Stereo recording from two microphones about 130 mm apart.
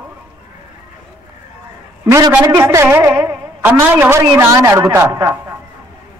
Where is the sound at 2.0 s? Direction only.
25° right (ahead or behind).